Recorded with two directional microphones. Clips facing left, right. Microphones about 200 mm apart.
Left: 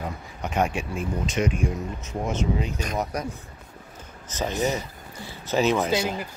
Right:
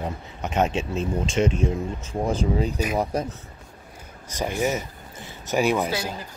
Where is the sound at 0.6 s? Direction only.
25° right (ahead or behind).